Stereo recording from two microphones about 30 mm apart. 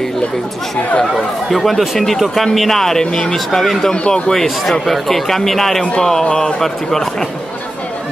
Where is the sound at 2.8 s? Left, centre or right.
Centre.